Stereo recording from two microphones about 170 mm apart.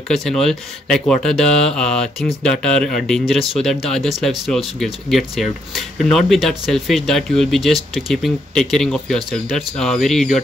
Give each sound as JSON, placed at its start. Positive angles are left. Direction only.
{"t": 0.1, "sound": "speech", "side_deg": 0}